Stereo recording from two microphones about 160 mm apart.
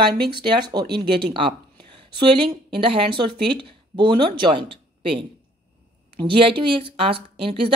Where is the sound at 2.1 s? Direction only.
30° right (ahead or behind).